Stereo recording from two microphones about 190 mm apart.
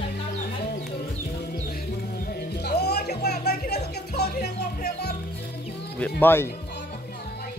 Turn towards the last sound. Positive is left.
turn(degrees=10)  # may be behind; listen again after turning